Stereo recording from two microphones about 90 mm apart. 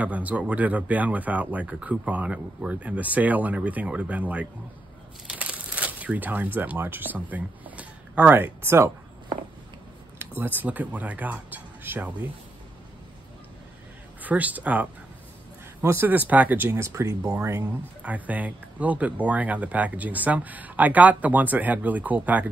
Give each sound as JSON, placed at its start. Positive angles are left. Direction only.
{"t": 0.0, "sound": "speech", "side_deg": -15}
{"t": 10.1, "sound": "speech", "side_deg": -25}
{"t": 14.2, "sound": "speech", "side_deg": -20}
{"t": 15.8, "sound": "speech", "side_deg": -25}
{"t": 18.0, "sound": "speech", "side_deg": -15}